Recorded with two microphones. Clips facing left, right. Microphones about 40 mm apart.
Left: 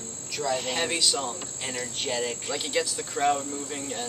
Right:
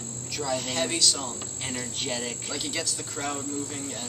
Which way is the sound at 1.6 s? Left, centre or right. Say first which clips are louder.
Left 1 dB; centre.